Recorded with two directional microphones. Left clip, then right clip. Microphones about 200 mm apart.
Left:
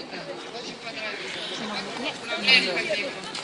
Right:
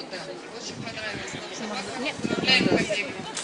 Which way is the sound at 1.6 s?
45° right (ahead or behind).